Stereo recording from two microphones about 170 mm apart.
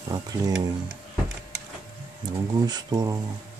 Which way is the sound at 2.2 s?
25° right (ahead or behind).